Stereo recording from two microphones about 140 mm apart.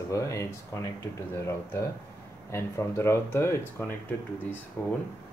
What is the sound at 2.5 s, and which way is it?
Speech, 20° left (ahead or behind).